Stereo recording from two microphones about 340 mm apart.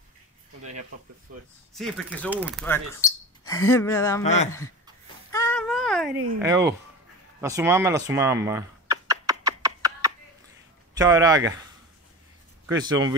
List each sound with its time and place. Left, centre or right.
1.8 s speech: centre
4.2 s speech: centre
5.3 s baby cry: centre
7.3 s a sound: centre
11.0 s speech: centre